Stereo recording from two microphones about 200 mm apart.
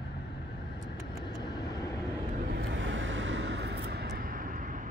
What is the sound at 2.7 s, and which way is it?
Vehicle, 70° right (ahead or behind).